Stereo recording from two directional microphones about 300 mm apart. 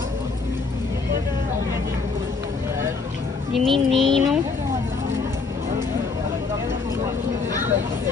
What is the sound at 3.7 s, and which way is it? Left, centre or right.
Speech, centre.